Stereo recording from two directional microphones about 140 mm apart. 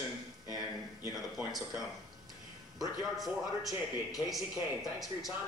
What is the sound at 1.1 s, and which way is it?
Speech, centre (ahead or behind).